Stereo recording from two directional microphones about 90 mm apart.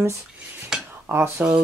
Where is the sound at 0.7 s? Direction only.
5° right (ahead or behind).